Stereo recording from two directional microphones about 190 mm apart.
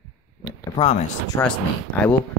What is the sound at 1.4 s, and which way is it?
Speech, 10° left (ahead or behind).